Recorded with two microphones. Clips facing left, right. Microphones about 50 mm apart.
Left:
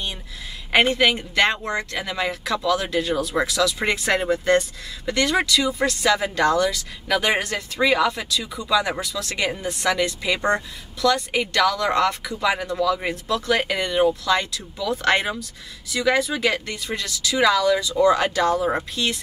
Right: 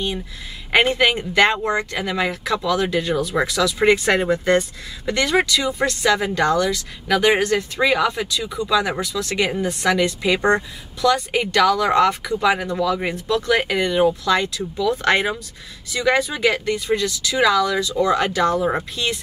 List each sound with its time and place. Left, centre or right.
0.7 s speech: centre